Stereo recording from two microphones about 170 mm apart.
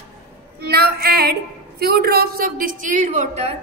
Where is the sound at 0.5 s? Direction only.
65° right (ahead or behind); by 3.5 s 40° right (ahead or behind).